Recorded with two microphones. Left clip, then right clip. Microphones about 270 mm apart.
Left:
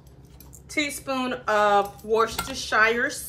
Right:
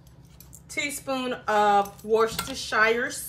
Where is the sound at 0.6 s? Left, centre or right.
Left.